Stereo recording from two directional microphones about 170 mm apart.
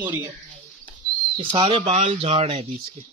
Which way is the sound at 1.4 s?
30° right (ahead or behind).